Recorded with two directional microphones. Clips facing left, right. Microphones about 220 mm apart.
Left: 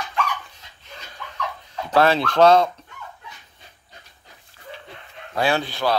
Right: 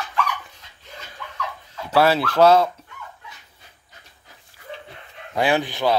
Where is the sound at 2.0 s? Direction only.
5° right (ahead or behind).